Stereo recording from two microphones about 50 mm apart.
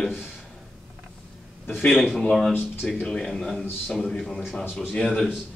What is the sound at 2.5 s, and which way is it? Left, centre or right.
Speech, centre.